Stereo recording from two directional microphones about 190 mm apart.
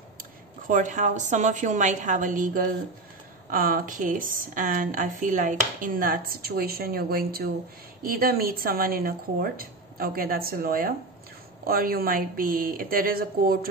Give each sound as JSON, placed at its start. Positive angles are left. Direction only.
{"t": 0.2, "sound": "a woman's voice", "side_deg": -40}